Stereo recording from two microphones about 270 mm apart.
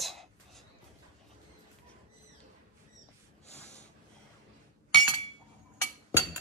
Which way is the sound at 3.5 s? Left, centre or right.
Left.